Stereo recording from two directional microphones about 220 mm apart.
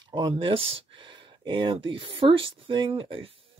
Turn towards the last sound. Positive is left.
turn(degrees=-25)  # may be behind; listen again after turning